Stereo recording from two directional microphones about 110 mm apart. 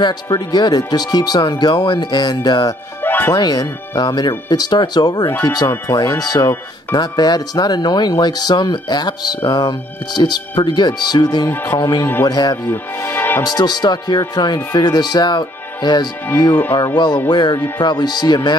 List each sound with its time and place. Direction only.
0.0 s speech: 40° left (ahead or behind)
3.0 s music: 20° left (ahead or behind)
3.3 s speech: 40° left (ahead or behind)
5.7 s speech: 30° left (ahead or behind)
11.4 s speech: 25° left (ahead or behind)
12.3 s speech: 40° left (ahead or behind)
13.0 s music: 20° left (ahead or behind)
13.4 s speech: 40° left (ahead or behind)
16.3 s speech: 30° left (ahead or behind)